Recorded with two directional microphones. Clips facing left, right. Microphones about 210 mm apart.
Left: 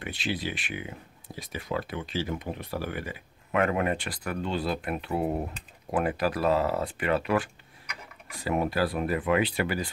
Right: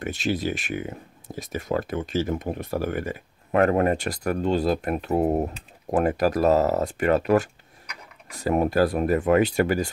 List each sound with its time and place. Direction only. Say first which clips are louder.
0.0 s speech: right 6 dB; 45° right (ahead or behind)